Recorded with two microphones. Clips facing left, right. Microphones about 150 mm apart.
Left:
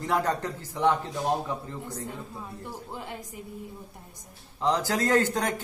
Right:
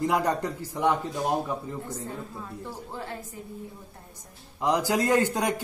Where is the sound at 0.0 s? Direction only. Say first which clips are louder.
Right 2 dB; 15° right (ahead or behind).